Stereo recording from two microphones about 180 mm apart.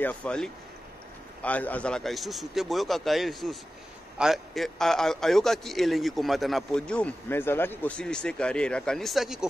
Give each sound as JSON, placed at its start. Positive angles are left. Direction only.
{"t": 0.0, "sound": "a man's voice", "side_deg": 5}